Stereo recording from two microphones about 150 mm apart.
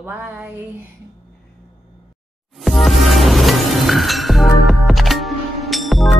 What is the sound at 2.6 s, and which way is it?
Music, centre (ahead or behind).